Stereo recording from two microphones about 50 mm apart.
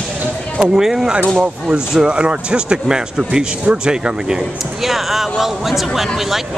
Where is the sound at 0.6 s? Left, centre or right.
Centre.